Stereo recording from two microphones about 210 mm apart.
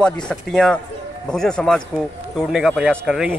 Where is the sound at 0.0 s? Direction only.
5° left (ahead or behind).